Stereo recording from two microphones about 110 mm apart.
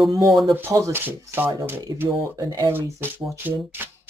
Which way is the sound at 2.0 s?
30° right (ahead or behind).